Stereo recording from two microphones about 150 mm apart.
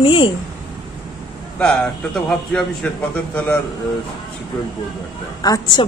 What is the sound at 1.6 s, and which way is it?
A man's voice, 5° left (ahead or behind).